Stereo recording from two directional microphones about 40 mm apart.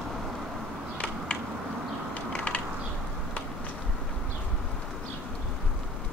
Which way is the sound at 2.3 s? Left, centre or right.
Left.